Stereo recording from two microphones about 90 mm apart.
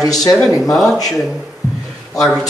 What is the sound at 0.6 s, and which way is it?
Speech, centre (ahead or behind).